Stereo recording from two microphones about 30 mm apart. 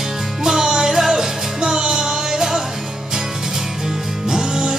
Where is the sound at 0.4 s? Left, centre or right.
Right.